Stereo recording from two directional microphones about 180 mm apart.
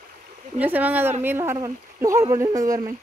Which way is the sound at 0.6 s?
10° right (ahead or behind).